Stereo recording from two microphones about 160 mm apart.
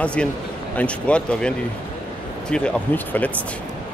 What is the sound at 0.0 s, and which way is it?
Speech, 5° left (ahead or behind).